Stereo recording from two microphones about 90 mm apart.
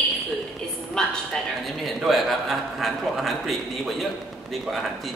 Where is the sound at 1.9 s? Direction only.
Centre (ahead or behind).